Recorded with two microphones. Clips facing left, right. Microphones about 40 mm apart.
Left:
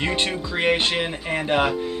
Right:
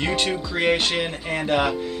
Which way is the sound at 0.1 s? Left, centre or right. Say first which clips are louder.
Right 1 dB; left.